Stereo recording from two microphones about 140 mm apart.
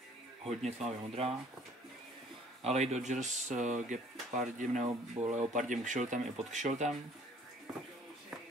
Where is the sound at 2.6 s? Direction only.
50° right (ahead or behind).